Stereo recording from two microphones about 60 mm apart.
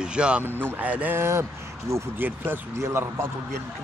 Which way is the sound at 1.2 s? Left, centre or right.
Right.